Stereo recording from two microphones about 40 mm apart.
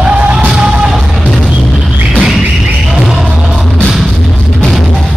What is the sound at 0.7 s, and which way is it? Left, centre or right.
Music, centre.